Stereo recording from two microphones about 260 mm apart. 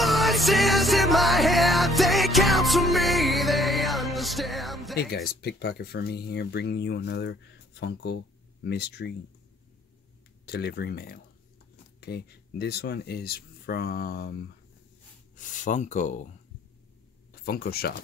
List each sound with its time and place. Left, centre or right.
0.0 s music: centre
4.9 s speech: left
10.4 s speech: left
15.3 s speech: left
17.5 s speech: left